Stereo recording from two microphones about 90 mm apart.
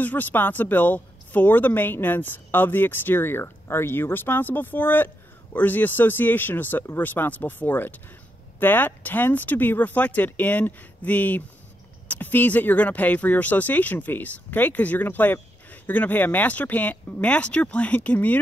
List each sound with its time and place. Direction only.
0.0 s speech: 20° left (ahead or behind)